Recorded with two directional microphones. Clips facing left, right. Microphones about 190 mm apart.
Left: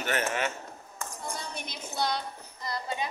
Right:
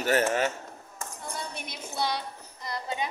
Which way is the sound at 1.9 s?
10° right (ahead or behind).